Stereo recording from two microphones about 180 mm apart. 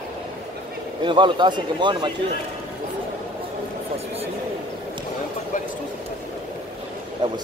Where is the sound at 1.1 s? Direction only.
25° right (ahead or behind).